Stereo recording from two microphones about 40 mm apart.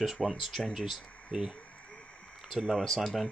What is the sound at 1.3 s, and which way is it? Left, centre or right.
Speech, centre.